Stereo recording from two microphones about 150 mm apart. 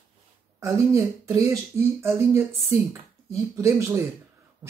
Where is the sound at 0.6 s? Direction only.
20° right (ahead or behind).